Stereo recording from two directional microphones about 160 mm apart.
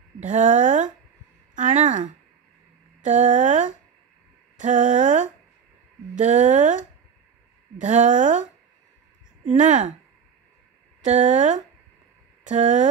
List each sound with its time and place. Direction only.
0.2 s speech: 50° right (ahead or behind)
1.5 s a sound: 50° right (ahead or behind)
6.1 s speech: 50° right (ahead or behind)
11.0 s speech: 50° right (ahead or behind)